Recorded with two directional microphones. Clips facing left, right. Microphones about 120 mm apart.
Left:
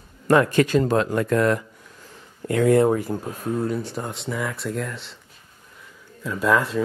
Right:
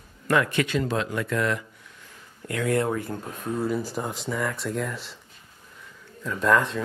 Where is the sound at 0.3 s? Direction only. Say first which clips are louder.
Left 6 dB; 35° left (ahead or behind).